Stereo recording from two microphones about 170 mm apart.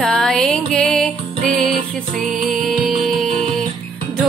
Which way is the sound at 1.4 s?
55° right (ahead or behind).